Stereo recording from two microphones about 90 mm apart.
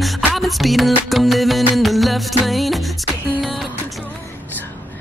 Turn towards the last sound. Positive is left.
turn(degrees=0)  # may be behind; listen again after turning